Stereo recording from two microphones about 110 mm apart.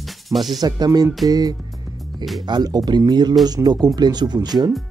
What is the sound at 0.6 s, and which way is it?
Speech, 35° right (ahead or behind).